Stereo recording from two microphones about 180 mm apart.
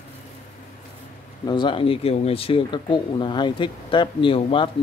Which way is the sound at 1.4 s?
25° left (ahead or behind).